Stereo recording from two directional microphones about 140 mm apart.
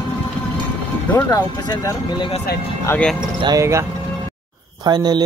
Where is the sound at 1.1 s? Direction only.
25° left (ahead or behind).